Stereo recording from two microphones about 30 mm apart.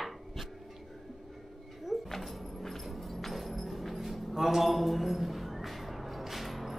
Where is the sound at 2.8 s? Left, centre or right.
Centre.